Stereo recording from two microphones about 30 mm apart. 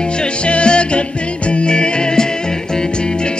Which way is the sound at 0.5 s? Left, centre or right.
Left.